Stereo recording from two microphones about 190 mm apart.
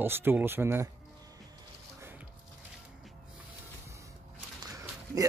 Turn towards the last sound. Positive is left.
turn(degrees=-15)  # may be behind; listen again after turning